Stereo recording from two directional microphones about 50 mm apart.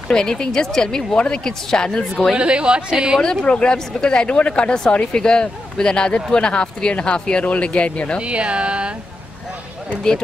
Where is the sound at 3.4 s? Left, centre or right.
Centre.